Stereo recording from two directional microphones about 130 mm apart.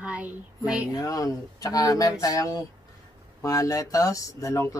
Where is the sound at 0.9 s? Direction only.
25° left (ahead or behind).